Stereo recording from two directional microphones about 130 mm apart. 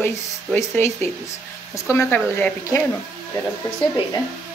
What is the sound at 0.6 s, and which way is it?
A woman's voice, 20° left (ahead or behind).